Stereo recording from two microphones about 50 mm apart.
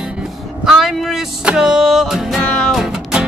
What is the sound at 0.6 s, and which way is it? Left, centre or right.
Vehicle, centre.